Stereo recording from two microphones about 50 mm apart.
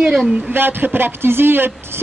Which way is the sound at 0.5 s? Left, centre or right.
Right.